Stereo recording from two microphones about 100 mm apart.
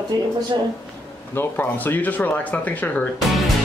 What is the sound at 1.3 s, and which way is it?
Speech, 20° left (ahead or behind).